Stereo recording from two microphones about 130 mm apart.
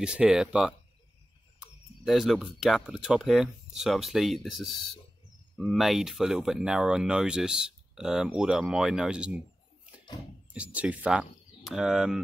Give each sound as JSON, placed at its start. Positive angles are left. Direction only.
{"t": 0.0, "sound": "speech", "side_deg": -5}
{"t": 10.5, "sound": "speech", "side_deg": -10}